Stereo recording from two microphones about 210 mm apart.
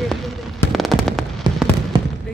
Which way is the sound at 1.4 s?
20° right (ahead or behind).